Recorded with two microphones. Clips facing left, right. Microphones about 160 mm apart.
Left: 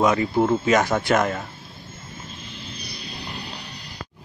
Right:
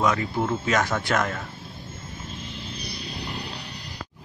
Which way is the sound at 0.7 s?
10° left (ahead or behind).